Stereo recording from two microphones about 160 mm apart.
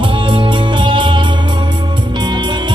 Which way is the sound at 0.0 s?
30° right (ahead or behind).